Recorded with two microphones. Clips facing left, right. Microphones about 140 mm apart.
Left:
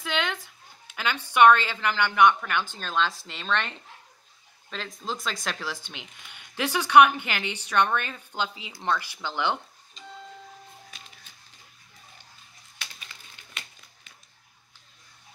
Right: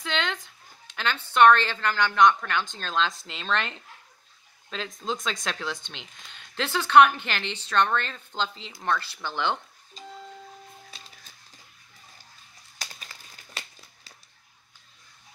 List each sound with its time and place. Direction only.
0.0 s a woman's voice: 10° left (ahead or behind)
10.9 s music: 30° right (ahead or behind)
12.7 s crumpling: 40° right (ahead or behind)